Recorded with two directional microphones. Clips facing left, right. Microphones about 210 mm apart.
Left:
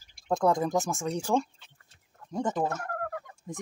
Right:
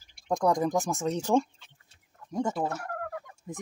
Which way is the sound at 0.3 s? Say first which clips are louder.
Even; 15° right (ahead or behind).